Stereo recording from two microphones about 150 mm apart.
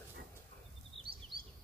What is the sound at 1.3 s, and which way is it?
Bird vocalization, 35° right (ahead or behind).